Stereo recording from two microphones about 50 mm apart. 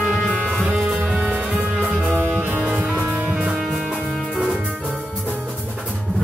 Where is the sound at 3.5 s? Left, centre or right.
Centre.